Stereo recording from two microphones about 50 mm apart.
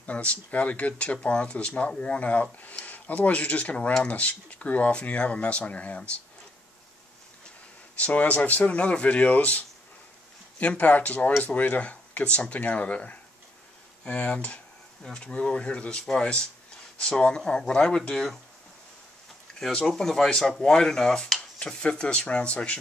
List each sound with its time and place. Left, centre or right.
0.0 s speech: left
8.0 s speech: left; by 18.4 s centre
20.0 s speech: centre